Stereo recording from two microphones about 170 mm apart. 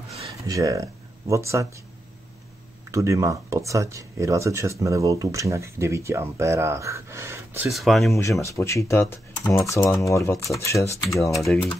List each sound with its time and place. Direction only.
0.5 s speech: 20° right (ahead or behind)
2.9 s speech: 20° right (ahead or behind)
7.6 s speech: centre (ahead or behind)
8.2 s speech: 15° left (ahead or behind)
11.3 s speech: centre (ahead or behind)